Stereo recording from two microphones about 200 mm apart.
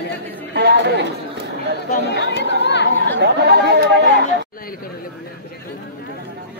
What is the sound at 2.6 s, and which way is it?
Speech, 60° left (ahead or behind).